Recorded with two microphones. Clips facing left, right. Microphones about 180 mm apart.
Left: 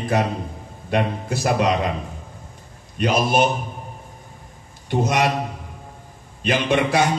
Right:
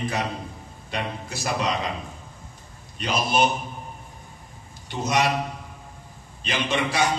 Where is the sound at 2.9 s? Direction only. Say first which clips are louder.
Left 5 dB; 50° left (ahead or behind).